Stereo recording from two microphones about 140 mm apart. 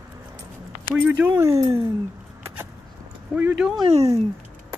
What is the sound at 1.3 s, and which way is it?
Speech, 25° right (ahead or behind).